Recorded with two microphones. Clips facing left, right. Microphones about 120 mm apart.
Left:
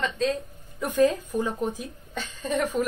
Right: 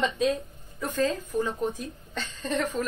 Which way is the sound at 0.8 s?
15° left (ahead or behind).